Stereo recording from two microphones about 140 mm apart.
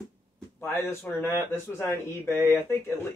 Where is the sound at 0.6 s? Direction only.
20° left (ahead or behind).